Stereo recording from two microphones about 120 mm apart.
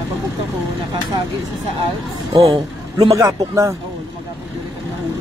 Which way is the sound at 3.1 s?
25° right (ahead or behind).